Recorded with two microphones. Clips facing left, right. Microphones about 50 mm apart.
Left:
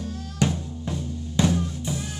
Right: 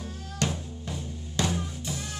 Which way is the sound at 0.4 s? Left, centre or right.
Centre.